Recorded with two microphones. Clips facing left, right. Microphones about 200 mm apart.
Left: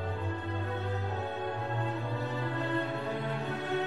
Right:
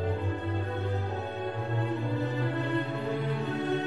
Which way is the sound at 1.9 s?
20° right (ahead or behind).